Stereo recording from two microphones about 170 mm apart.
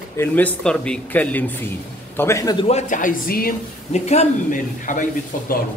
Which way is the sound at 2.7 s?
50° left (ahead or behind).